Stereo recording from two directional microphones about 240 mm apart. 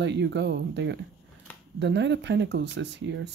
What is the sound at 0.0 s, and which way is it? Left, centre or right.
Speech, right.